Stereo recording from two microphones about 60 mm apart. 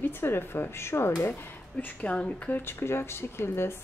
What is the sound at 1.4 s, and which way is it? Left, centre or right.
Speech, left.